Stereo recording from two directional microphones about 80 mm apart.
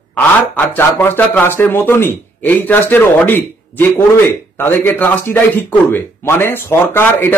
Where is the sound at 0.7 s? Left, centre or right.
Left.